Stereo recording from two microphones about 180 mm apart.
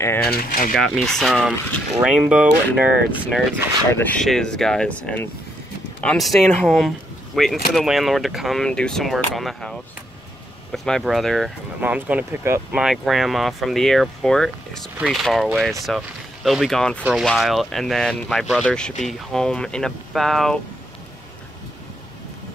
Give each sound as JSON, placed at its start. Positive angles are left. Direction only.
{"t": 0.3, "sound": "speech", "side_deg": 50}
{"t": 0.7, "sound": "speech", "side_deg": 0}
{"t": 3.9, "sound": "speech", "side_deg": 10}